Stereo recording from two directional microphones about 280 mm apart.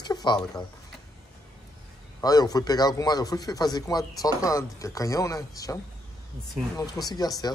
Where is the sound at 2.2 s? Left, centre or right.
Centre.